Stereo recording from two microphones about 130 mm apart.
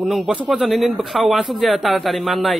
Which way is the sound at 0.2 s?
10° right (ahead or behind).